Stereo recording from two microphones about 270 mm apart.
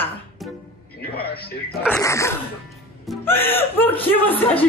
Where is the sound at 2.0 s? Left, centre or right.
Centre.